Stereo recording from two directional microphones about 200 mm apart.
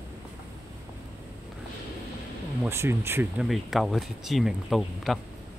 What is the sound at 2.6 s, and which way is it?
Speech, 10° right (ahead or behind).